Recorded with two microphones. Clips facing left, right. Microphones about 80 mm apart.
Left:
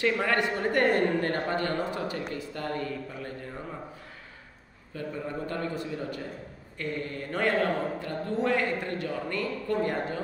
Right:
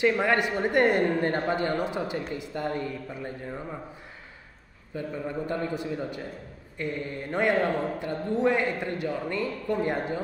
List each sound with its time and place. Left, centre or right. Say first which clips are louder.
0.2 s a man's voice: right 2 dB; centre
4.9 s a man's voice: right 2 dB; centre